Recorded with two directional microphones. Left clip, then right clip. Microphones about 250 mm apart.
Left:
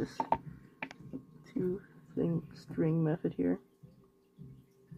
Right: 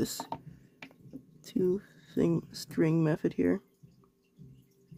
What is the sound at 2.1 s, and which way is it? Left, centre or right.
Speech, right.